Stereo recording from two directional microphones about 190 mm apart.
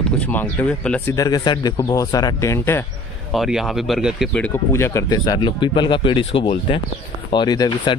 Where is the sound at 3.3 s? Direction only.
Centre (ahead or behind).